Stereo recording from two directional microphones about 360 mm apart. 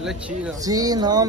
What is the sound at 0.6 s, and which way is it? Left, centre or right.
Speech, centre.